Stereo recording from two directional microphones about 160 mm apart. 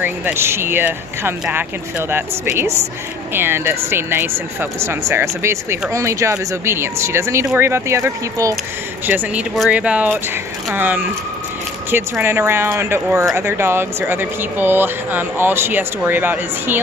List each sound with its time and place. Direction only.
0.0 s speech: 15° right (ahead or behind)